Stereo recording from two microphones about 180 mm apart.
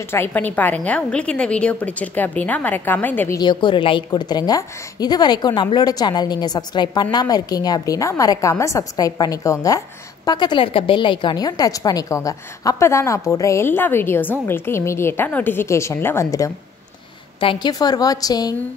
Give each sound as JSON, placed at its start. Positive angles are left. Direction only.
{"t": 0.1, "sound": "a woman's voice", "side_deg": 10}
{"t": 3.3, "sound": "a woman's voice", "side_deg": 25}